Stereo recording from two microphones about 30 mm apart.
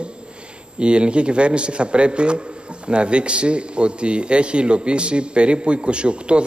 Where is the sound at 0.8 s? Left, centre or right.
Right.